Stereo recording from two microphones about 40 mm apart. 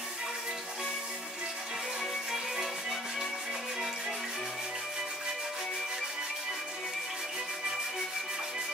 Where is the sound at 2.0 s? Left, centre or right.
Centre.